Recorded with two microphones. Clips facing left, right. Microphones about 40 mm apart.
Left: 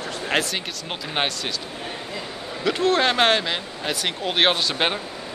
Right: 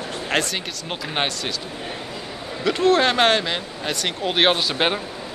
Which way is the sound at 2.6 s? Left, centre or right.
Centre.